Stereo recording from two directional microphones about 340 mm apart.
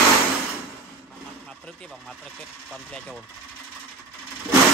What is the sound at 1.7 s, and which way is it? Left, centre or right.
Speech, centre.